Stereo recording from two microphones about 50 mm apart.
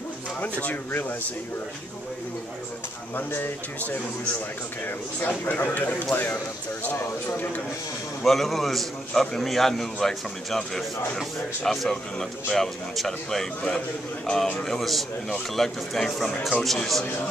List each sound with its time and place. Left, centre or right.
0.4 s speech: left
3.2 s speech: left
4.8 s speech: left
8.2 s a man's voice: centre
13.6 s speech: centre
14.6 s a man's voice: centre